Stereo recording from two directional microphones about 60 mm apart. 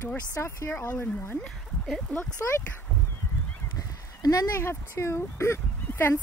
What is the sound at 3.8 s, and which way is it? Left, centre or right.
Goose, left.